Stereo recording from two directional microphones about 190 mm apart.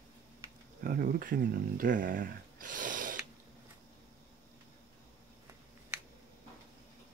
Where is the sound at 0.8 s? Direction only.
45° right (ahead or behind).